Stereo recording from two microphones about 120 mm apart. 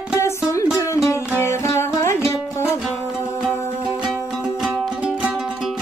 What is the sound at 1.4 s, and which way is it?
Music, 20° left (ahead or behind).